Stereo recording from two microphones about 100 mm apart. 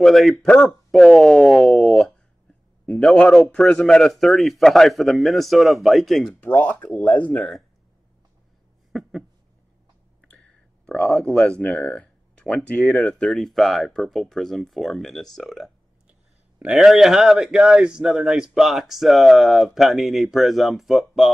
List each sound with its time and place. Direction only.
0.0 s speech: centre (ahead or behind)
0.7 s a sound: centre (ahead or behind)
2.9 s speech: 5° left (ahead or behind)
6.4 s speech: 15° left (ahead or behind)
8.9 s a sound: 5° right (ahead or behind)
10.3 s speech: 10° left (ahead or behind)
16.1 s speech: 10° right (ahead or behind)